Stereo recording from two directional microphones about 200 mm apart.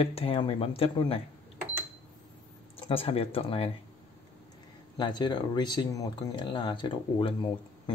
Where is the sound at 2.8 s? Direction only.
30° left (ahead or behind).